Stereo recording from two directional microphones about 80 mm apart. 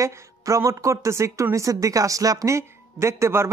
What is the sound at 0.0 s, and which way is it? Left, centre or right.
Speech, right.